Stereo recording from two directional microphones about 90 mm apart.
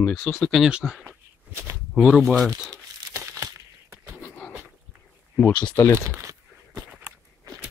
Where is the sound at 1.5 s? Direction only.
30° right (ahead or behind).